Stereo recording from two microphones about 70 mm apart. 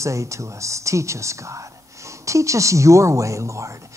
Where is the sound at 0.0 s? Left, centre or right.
Right.